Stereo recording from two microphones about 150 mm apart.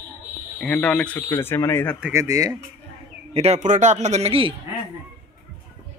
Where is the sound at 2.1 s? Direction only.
20° right (ahead or behind).